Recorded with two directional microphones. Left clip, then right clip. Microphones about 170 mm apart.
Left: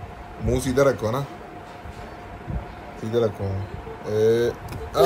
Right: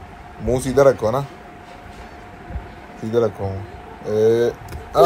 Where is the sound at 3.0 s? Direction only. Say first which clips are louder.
Right 4 dB; 30° right (ahead or behind).